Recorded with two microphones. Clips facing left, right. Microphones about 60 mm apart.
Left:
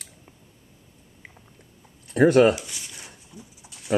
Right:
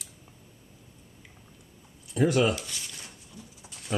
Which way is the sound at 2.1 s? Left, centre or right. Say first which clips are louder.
Left 8 dB; left.